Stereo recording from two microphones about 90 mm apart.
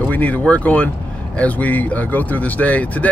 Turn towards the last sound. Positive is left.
turn(degrees=15)  # may be behind; listen again after turning